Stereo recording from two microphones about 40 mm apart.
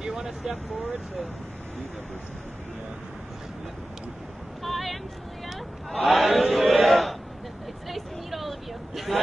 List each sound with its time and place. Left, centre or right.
0.0 s vehicle: centre
4.6 s vehicle: centre
5.9 s battle cry: centre
7.9 s vehicle: centre